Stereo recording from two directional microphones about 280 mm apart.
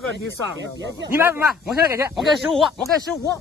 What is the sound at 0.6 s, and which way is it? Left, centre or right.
Speech, right.